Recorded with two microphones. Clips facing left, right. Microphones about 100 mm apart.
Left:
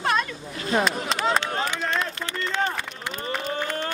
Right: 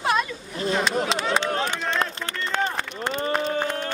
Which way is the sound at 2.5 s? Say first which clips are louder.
Right 2 dB; 50° right (ahead or behind).